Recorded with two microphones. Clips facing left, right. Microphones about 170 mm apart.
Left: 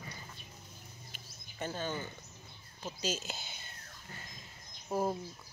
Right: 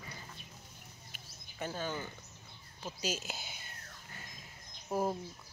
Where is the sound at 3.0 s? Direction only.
10° right (ahead or behind).